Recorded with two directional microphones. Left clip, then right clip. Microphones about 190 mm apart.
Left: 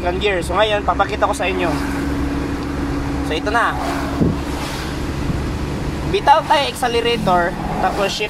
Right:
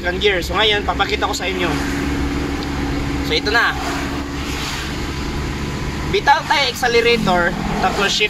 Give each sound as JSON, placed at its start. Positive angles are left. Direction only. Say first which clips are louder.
{"t": 0.2, "sound": "speech", "louder": "right 2 dB", "side_deg": 50}
{"t": 3.3, "sound": "speech", "louder": "right 2 dB", "side_deg": 50}
{"t": 6.1, "sound": "speech", "louder": "left 1 dB", "side_deg": 50}